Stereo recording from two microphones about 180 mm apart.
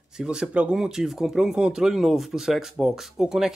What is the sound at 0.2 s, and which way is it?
Speech, 5° right (ahead or behind).